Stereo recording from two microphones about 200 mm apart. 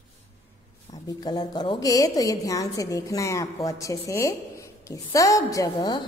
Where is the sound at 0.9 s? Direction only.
20° left (ahead or behind).